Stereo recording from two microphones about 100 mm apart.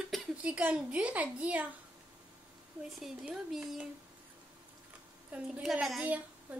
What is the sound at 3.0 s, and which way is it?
Speech, 5° right (ahead or behind).